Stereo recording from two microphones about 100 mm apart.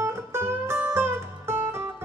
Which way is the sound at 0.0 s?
25° right (ahead or behind).